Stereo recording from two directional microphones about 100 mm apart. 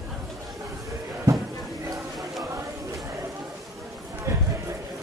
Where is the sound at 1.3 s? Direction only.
30° right (ahead or behind).